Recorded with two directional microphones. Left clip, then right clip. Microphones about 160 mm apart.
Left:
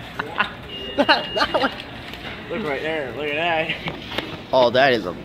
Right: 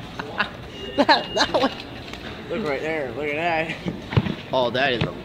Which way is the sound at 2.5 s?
Centre (ahead or behind).